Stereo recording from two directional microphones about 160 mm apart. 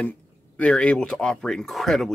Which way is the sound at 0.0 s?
10° left (ahead or behind).